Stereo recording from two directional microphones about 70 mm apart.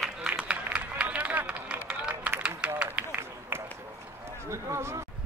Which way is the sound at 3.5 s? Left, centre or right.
Right.